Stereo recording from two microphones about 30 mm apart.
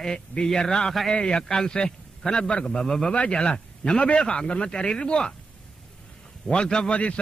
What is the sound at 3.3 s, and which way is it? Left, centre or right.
Speech, left.